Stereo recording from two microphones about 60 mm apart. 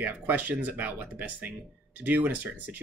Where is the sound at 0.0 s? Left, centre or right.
Right.